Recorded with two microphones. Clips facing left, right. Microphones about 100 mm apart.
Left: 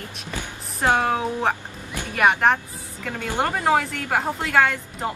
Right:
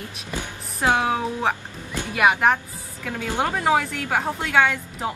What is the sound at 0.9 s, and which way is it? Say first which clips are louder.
Speech: left 1 dB; centre (ahead or behind).